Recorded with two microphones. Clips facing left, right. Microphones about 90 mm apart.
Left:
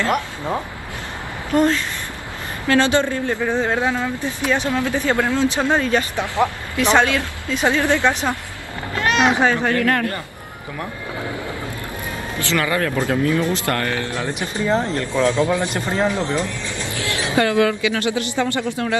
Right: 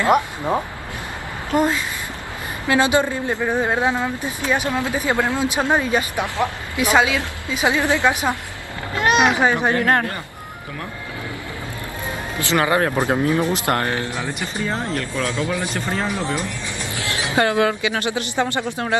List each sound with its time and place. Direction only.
0.0 s speech: 15° right (ahead or behind)
12.4 s speech: 20° right (ahead or behind)
14.6 s speech: 20° left (ahead or behind)
16.4 s music: 20° right (ahead or behind)
18.4 s speech: 45° right (ahead or behind)